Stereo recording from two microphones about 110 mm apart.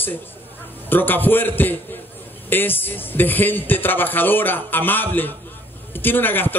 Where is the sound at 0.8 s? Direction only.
15° left (ahead or behind).